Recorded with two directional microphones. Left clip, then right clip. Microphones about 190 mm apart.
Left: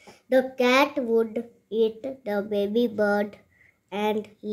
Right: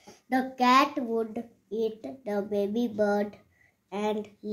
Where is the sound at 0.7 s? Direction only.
30° left (ahead or behind).